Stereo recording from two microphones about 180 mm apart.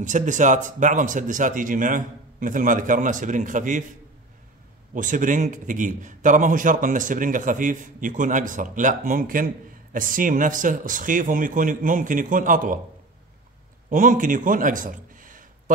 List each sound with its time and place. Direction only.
0.0 s a man's voice: 45° right (ahead or behind)
4.9 s a man's voice: 45° right (ahead or behind)
13.8 s a man's voice: 45° right (ahead or behind)